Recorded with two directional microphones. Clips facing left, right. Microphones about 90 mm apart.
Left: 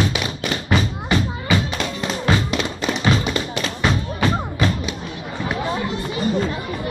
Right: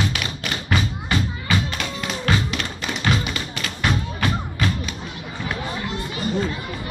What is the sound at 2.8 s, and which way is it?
Tap, 30° left (ahead or behind).